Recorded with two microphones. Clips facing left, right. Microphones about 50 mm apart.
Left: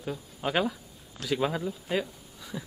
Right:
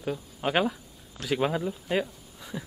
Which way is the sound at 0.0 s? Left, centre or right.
Centre.